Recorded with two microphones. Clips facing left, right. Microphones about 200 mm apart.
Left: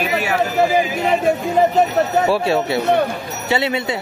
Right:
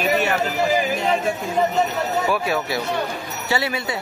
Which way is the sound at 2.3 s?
30° left (ahead or behind).